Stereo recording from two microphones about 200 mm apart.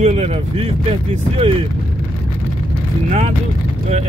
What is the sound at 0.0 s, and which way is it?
Speech, 35° right (ahead or behind).